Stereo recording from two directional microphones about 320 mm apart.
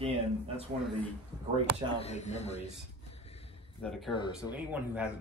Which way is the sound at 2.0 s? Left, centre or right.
Left.